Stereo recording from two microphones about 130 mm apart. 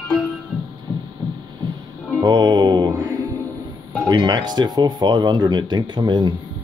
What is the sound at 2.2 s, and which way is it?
Music, 35° right (ahead or behind).